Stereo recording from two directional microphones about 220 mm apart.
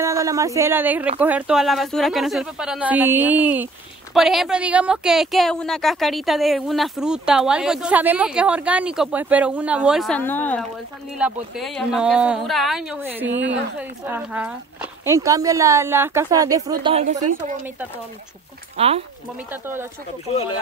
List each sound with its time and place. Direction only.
0.0 s speech: 15° right (ahead or behind); by 10.6 s 10° left (ahead or behind)
11.1 s speech: 5° right (ahead or behind)
13.4 s a woman's voice: 55° right (ahead or behind)
13.7 s speech: 5° right (ahead or behind)
16.8 s a woman's voice: 30° right (ahead or behind)
18.8 s a woman's voice: 25° right (ahead or behind)
19.5 s speech: 10° right (ahead or behind)